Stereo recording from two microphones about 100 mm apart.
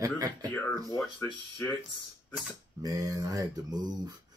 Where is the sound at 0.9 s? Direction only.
25° left (ahead or behind).